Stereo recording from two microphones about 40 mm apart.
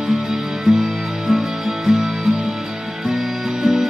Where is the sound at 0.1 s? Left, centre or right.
Centre.